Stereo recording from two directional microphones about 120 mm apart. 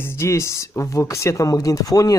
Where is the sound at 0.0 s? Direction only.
20° left (ahead or behind).